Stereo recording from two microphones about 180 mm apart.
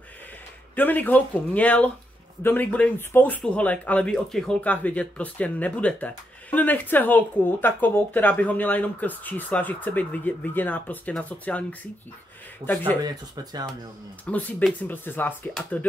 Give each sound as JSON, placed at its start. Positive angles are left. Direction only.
{"t": 0.7, "sound": "speech", "side_deg": 10}
{"t": 13.0, "sound": "speech", "side_deg": -20}
{"t": 14.2, "sound": "speech", "side_deg": 10}